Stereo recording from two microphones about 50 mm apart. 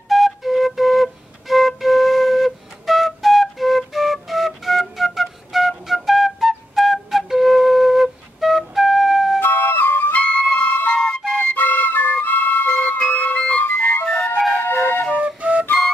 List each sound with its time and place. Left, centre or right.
0.1 s flute: centre
9.4 s flute: left
10.1 s music: left
11.0 s music: centre
11.5 s music: left
12.6 s music: centre
13.1 s music: left
14.0 s music: centre
14.6 s flute: left
15.1 s flute: right